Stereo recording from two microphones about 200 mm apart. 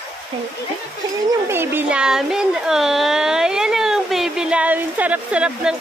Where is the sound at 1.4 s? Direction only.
10° right (ahead or behind).